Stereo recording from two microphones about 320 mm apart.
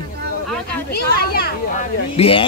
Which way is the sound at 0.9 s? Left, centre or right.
Left.